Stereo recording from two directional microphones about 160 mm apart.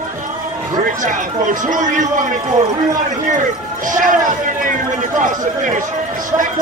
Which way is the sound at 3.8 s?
55° right (ahead or behind).